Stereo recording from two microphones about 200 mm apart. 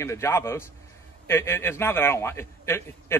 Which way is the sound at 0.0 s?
15° left (ahead or behind).